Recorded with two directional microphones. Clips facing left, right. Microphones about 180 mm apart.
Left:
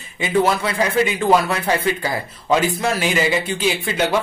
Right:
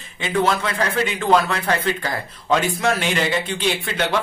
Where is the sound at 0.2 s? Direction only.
10° left (ahead or behind).